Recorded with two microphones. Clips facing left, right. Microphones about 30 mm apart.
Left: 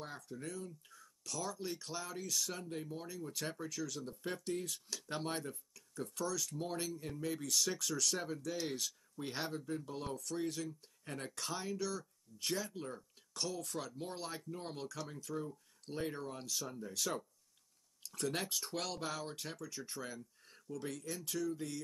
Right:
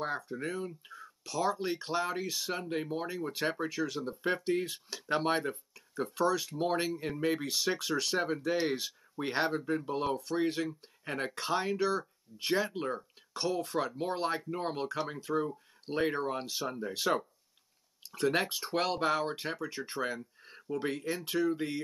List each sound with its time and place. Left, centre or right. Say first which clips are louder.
0.0 s speech: right 11 dB; right